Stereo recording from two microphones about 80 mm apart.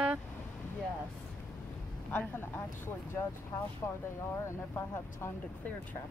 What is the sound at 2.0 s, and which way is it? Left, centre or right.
Speech, left.